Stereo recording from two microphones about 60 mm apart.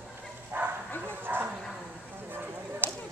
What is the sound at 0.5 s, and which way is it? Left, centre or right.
Bow-wow, right.